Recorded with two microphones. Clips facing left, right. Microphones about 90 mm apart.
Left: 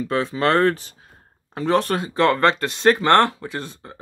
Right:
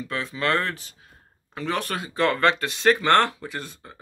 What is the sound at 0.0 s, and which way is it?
Speech, 35° left (ahead or behind).